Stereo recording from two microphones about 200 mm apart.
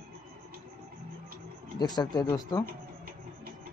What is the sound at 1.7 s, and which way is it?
Speech, 20° left (ahead or behind).